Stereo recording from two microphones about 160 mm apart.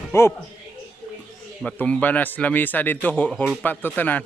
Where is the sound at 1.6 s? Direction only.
5° left (ahead or behind).